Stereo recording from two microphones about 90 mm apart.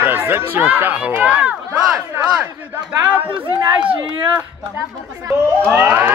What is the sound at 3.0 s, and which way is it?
Speech, 20° right (ahead or behind).